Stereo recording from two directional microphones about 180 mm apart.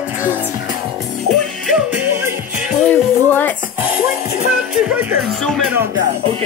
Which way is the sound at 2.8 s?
10° left (ahead or behind).